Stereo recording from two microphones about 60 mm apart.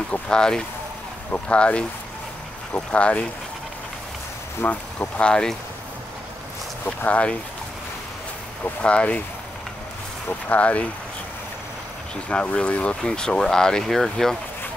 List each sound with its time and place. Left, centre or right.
0.1 s speech: centre
4.6 s speech: left
5.3 s speech: centre
7.1 s speech: centre
8.8 s speech: centre
10.5 s speech: left
12.3 s speech: left